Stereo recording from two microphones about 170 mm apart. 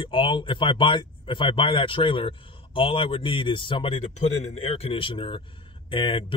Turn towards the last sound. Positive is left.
turn(degrees=30)  # may be behind; listen again after turning